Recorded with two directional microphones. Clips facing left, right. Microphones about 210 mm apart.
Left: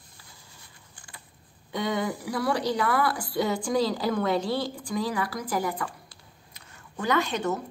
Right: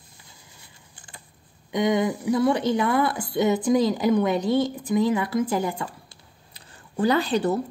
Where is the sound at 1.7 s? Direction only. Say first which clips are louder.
Right 6 dB; 20° right (ahead or behind).